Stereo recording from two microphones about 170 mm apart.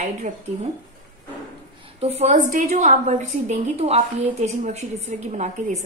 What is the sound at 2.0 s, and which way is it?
A woman's voice, 40° right (ahead or behind).